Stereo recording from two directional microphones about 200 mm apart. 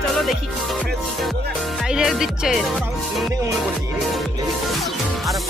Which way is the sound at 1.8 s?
Centre (ahead or behind).